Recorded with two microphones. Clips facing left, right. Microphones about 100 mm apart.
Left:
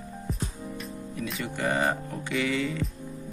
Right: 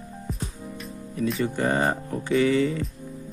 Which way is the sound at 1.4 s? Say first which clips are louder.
Right 2 dB; 35° right (ahead or behind).